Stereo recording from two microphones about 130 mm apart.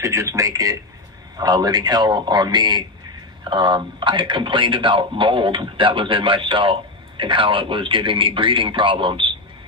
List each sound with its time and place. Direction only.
0.0 s a man's voice: 25° right (ahead or behind); by 9.3 s 40° right (ahead or behind)